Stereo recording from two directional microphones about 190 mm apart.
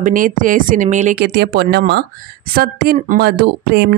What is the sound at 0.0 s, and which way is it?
Speech, 45° right (ahead or behind).